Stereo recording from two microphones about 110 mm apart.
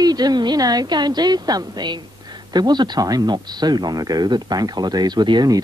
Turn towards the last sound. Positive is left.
turn(degrees=-40)  # may be behind; listen again after turning